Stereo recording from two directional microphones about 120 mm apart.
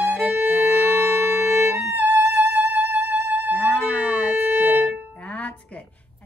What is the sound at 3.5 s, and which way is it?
Moo, 10° left (ahead or behind).